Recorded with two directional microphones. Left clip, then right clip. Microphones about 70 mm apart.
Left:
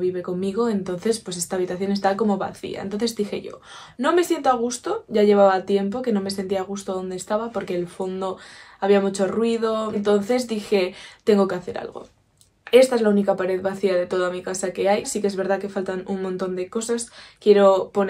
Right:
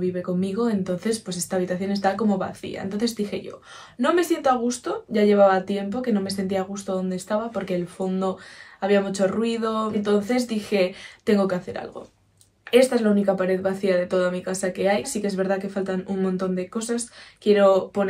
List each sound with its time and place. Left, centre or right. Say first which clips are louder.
0.0 s speech: left 2 dB; left
12.7 s a woman's voice: left 3 dB; left